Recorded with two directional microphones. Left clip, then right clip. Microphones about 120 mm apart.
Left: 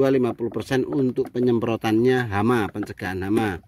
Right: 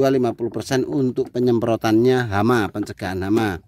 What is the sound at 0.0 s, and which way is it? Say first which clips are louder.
Speech: right 2 dB; 25° right (ahead or behind).